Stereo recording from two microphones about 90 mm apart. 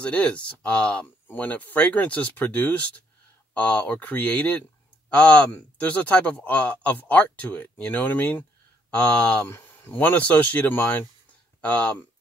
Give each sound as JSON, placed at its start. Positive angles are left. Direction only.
{"t": 0.0, "sound": "speech", "side_deg": 15}